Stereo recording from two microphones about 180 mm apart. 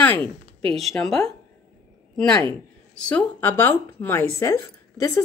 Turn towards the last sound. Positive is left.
turn(degrees=15)  # may be behind; listen again after turning